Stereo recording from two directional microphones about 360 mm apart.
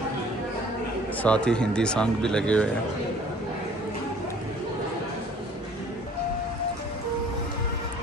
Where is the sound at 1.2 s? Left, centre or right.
Centre.